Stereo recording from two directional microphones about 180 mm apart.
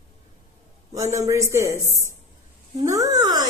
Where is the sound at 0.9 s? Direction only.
20° right (ahead or behind).